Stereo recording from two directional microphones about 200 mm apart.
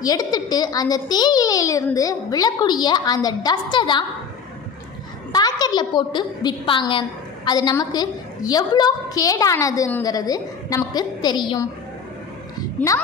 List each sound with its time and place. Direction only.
0.0 s a woman's voice: 20° left (ahead or behind)
5.3 s a woman's voice: 20° left (ahead or behind)